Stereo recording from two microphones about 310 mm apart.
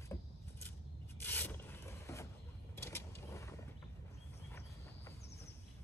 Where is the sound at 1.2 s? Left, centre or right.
Centre.